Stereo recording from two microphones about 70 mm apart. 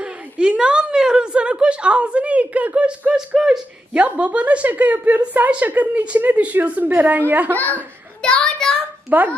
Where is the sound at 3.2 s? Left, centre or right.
Centre; by 5.5 s right.